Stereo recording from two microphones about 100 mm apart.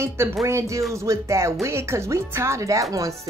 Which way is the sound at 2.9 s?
35° right (ahead or behind).